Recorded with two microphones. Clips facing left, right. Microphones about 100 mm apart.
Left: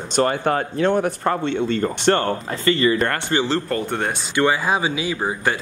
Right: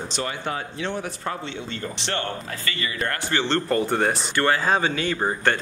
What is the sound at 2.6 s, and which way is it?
Speech, 30° left (ahead or behind).